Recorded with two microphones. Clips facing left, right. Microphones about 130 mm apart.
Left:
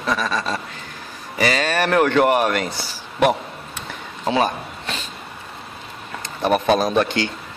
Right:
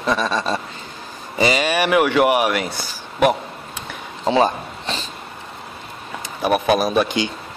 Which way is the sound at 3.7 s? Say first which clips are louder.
Right 1 dB; 25° right (ahead or behind).